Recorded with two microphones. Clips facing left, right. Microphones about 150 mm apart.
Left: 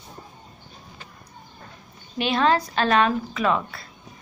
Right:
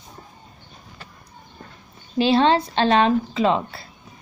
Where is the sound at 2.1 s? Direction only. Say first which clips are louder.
Right 4 dB; 30° right (ahead or behind).